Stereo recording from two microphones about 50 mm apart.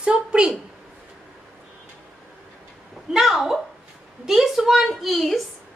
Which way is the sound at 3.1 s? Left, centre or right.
Centre.